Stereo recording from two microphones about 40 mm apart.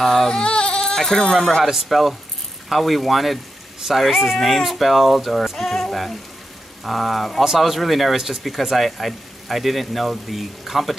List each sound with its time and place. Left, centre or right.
0.0 s speech: centre
0.3 s speech: left
1.6 s speech: centre